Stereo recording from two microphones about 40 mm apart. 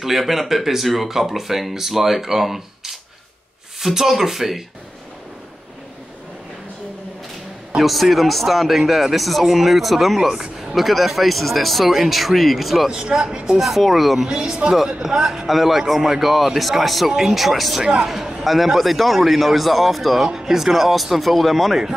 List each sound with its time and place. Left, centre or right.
0.0 s speech: centre
7.8 s speech: centre
12.9 s speech: right
13.6 s speech: centre
14.3 s speech: right
15.4 s speech: centre